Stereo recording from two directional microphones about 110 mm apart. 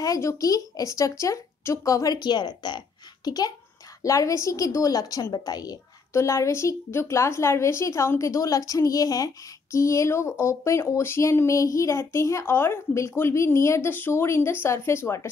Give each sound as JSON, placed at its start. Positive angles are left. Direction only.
{"t": 0.0, "sound": "a woman's voice", "side_deg": 30}